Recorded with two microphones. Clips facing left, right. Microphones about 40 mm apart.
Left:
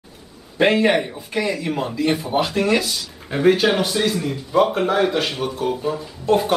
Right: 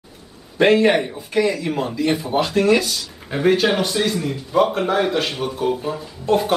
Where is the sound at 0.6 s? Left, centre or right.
Centre.